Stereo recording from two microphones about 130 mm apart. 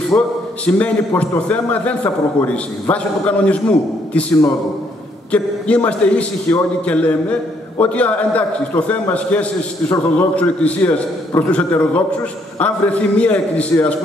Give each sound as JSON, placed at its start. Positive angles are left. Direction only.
{"t": 0.1, "sound": "speech", "side_deg": 20}
{"t": 0.7, "sound": "a man's voice", "side_deg": 10}
{"t": 5.3, "sound": "a man's voice", "side_deg": 10}